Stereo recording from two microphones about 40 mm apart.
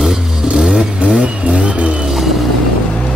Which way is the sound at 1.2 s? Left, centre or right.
Right.